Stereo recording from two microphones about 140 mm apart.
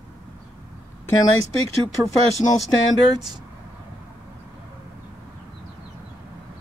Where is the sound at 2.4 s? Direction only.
30° left (ahead or behind).